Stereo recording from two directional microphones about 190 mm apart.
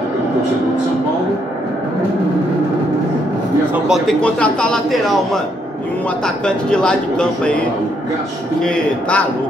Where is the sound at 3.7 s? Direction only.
Centre (ahead or behind).